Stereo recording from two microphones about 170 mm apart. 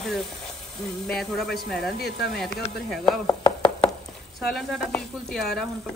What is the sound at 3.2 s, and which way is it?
Chopping, 25° left (ahead or behind).